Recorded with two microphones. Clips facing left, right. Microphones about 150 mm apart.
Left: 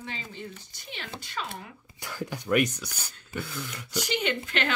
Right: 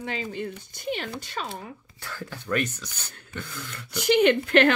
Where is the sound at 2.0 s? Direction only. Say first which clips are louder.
Left 2 dB; 15° left (ahead or behind).